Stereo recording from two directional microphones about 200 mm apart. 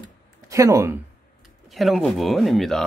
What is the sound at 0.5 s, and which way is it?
Speech, 15° right (ahead or behind).